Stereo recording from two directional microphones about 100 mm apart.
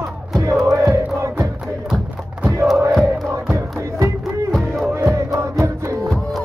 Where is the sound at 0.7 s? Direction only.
30° right (ahead or behind).